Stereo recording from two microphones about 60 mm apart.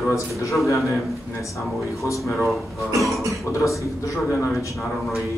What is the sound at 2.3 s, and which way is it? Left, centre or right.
Speech, centre.